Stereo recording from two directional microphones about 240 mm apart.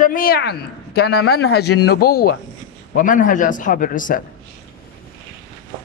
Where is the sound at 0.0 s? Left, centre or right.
Left.